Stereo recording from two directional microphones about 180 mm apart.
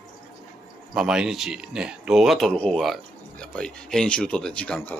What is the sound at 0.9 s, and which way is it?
A man's voice, 5° right (ahead or behind).